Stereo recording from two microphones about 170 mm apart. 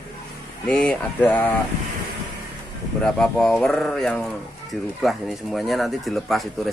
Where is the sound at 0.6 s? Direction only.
5° left (ahead or behind).